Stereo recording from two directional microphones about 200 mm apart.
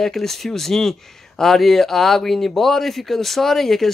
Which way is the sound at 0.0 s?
Centre (ahead or behind).